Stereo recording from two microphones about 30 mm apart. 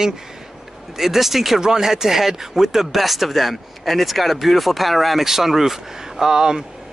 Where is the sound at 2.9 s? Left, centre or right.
Centre.